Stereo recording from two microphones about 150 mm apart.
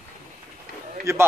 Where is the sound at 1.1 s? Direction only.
20° right (ahead or behind).